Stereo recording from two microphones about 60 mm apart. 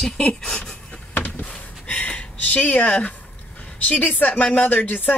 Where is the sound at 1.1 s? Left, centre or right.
Left.